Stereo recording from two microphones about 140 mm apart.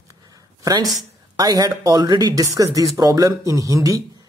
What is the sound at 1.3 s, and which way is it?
Speech, 30° right (ahead or behind).